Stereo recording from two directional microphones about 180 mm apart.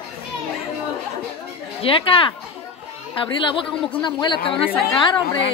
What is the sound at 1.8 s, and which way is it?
Speech, 30° left (ahead or behind).